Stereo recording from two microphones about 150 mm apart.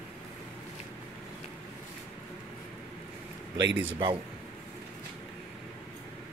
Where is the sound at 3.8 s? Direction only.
35° right (ahead or behind).